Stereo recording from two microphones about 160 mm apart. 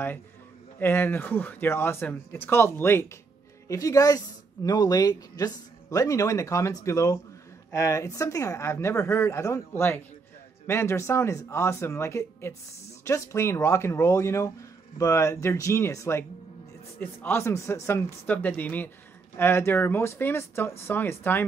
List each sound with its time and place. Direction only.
0.7 s speech: 15° left (ahead or behind)